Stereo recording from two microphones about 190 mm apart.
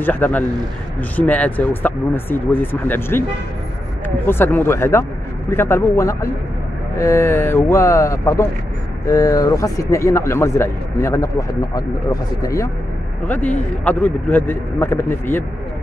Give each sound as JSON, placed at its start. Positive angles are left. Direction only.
{"t": 0.0, "sound": "speech", "side_deg": 10}
{"t": 4.3, "sound": "speech", "side_deg": 10}